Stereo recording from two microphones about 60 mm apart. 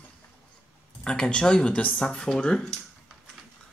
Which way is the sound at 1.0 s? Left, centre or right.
Centre.